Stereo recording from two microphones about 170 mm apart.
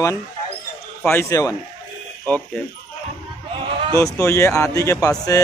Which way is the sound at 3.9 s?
20° left (ahead or behind).